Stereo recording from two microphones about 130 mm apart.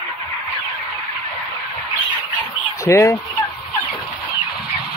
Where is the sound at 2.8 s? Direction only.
25° left (ahead or behind).